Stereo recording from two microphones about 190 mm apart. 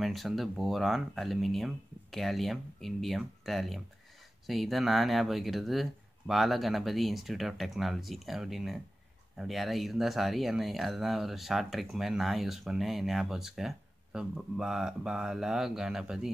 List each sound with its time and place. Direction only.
0.0 s speech: centre (ahead or behind)